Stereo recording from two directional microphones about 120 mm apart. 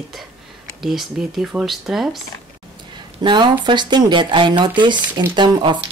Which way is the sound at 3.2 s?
40° right (ahead or behind).